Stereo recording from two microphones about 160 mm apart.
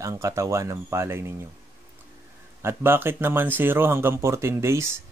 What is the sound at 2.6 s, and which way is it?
Speech, 15° right (ahead or behind).